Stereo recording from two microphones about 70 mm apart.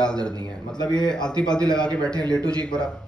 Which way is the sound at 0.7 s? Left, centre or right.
Left.